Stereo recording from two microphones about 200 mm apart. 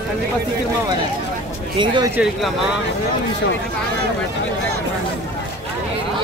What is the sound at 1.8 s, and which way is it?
Speech, 25° right (ahead or behind).